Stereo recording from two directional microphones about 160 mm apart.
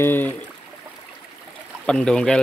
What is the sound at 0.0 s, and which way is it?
Speech, 15° left (ahead or behind).